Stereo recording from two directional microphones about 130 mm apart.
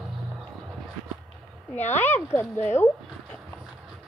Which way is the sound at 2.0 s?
15° left (ahead or behind).